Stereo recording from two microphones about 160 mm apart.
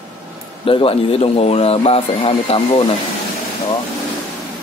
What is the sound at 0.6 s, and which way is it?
Speech, 35° left (ahead or behind).